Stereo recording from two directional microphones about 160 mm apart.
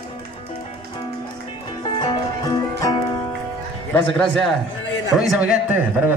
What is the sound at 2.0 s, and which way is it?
Music, 25° left (ahead or behind).